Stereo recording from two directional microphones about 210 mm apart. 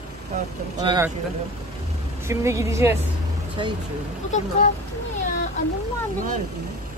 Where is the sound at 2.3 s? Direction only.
15° right (ahead or behind).